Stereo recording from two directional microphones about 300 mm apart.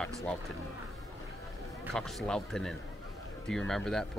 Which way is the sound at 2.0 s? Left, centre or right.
Centre.